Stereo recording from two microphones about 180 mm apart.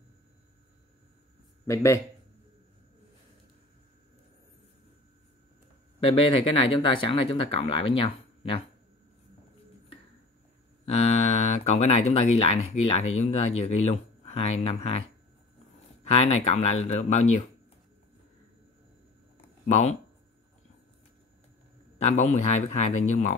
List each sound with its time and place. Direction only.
1.7 s speech: 15° left (ahead or behind)
5.9 s speech: 30° left (ahead or behind)
10.9 s speech: 40° left (ahead or behind)
19.7 s speech: 40° left (ahead or behind)
21.9 s speech: 40° left (ahead or behind)